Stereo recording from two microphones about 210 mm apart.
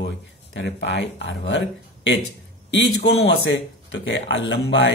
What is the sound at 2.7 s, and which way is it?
Speech, 55° left (ahead or behind).